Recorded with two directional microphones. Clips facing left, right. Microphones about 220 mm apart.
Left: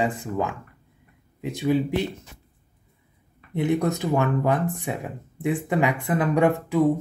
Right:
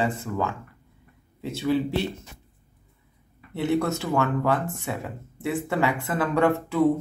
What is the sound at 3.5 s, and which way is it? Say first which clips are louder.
Speech: left 1 dB; 15° left (ahead or behind).